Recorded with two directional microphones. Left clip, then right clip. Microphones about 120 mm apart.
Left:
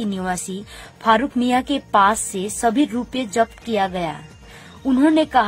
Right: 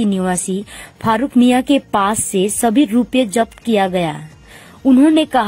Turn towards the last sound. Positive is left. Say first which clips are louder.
# right 3 dB
turn(degrees=-50)  # may be behind; listen again after turning